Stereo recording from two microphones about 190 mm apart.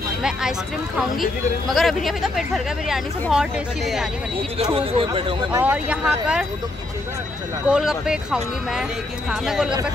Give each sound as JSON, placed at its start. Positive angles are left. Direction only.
{"t": 0.2, "sound": "speech", "side_deg": -5}
{"t": 4.6, "sound": "speech", "side_deg": -30}
{"t": 5.6, "sound": "speech", "side_deg": -5}
{"t": 7.6, "sound": "speech", "side_deg": -5}